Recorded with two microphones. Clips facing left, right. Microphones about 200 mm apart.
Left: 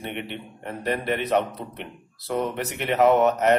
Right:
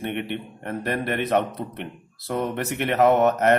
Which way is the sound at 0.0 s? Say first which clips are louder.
Right 4 dB; 50° right (ahead or behind).